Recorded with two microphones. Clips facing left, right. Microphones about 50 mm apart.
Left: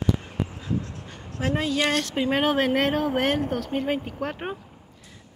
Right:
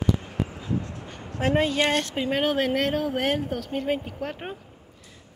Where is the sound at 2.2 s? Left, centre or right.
Centre.